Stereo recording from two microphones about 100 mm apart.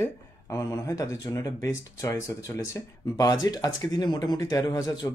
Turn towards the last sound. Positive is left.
turn(degrees=40)  # may be behind; listen again after turning